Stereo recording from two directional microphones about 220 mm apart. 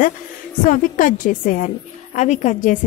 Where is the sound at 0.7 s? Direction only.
35° left (ahead or behind).